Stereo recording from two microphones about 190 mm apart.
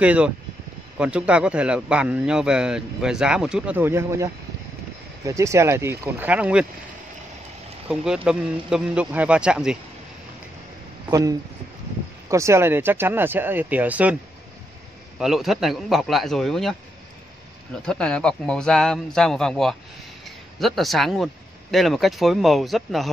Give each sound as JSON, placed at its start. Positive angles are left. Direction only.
{"t": 0.0, "sound": "a man's voice", "side_deg": -5}
{"t": 7.9, "sound": "a man's voice", "side_deg": -5}
{"t": 11.1, "sound": "speech", "side_deg": -20}
{"t": 15.1, "sound": "a man's voice", "side_deg": 0}
{"t": 17.8, "sound": "a man's voice", "side_deg": 5}